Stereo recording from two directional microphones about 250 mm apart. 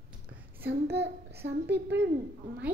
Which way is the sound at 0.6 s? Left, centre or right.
Right.